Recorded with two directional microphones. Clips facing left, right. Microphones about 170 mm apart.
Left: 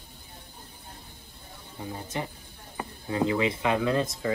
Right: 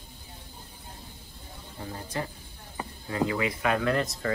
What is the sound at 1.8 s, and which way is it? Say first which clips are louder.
Speech: left 1 dB; 20° left (ahead or behind).